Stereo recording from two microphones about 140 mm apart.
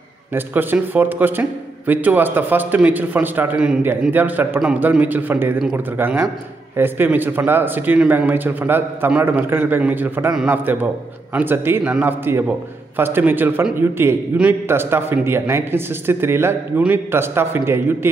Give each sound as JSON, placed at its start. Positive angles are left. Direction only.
{"t": 0.3, "sound": "a man's voice", "side_deg": -15}